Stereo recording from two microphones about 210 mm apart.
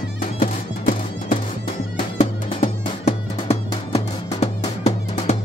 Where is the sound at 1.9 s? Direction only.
30° left (ahead or behind).